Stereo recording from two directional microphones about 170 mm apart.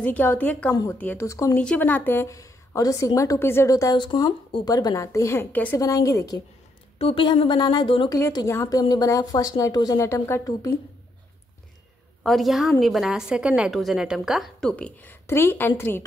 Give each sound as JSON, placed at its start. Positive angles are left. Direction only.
{"t": 0.0, "sound": "a woman's voice", "side_deg": 10}
{"t": 7.0, "sound": "a woman's voice", "side_deg": 35}
{"t": 12.2, "sound": "a woman's voice", "side_deg": 0}